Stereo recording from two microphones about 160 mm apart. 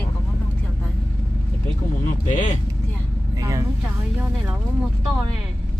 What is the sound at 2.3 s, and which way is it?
Speech, 50° left (ahead or behind).